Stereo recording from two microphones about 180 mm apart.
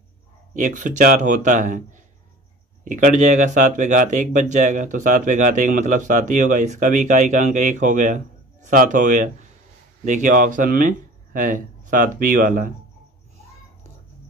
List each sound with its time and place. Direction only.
0.6 s speech: 45° right (ahead or behind)
2.8 s speech: 45° right (ahead or behind)
11.9 s speech: 50° right (ahead or behind)